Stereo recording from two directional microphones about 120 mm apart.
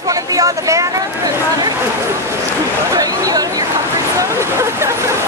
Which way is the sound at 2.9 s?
30° right (ahead or behind).